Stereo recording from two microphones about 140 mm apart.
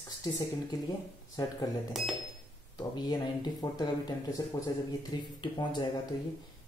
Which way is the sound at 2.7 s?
30° left (ahead or behind).